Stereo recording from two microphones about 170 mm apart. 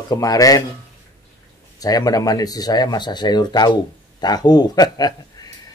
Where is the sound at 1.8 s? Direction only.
20° left (ahead or behind).